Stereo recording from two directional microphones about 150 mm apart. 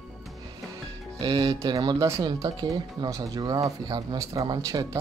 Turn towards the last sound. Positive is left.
turn(degrees=-25)  # may be behind; listen again after turning